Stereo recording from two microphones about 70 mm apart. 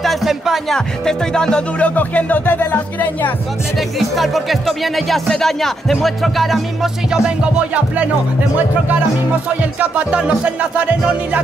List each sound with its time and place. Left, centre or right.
0.0 s music: centre
0.7 s music: centre
1.9 s music: left
3.7 s music: centre
7.2 s music: centre
9.8 s music: centre